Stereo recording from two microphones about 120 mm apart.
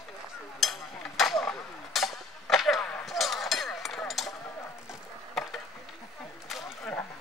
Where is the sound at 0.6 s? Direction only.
Centre (ahead or behind).